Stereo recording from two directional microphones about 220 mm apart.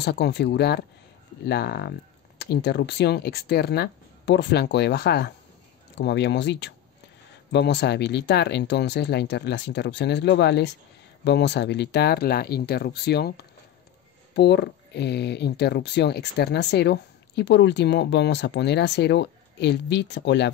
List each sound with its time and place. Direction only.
0.0 s speech: 50° left (ahead or behind)